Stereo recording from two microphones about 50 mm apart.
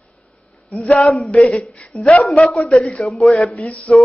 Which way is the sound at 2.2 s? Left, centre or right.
Centre.